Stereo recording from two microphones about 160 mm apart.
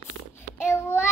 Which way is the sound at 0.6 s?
15° left (ahead or behind).